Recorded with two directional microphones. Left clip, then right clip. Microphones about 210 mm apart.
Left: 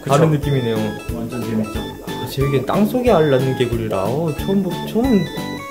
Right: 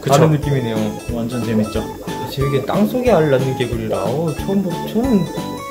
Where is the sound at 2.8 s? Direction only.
20° left (ahead or behind).